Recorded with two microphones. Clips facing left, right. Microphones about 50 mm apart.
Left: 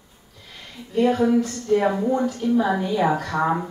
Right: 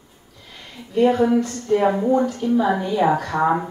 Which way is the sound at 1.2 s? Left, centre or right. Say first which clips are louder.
Right 1 dB; centre.